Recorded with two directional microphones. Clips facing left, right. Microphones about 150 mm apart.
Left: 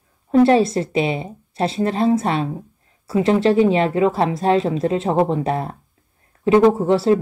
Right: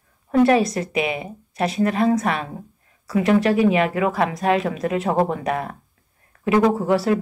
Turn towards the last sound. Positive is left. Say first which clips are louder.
# left 3 dB
turn(degrees=25)  # may be behind; listen again after turning